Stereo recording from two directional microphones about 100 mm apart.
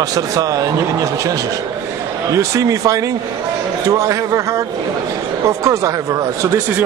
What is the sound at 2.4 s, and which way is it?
Speech, 35° right (ahead or behind).